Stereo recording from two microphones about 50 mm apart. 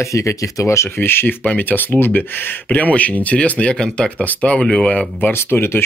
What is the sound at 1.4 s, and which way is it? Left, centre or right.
Speech, left.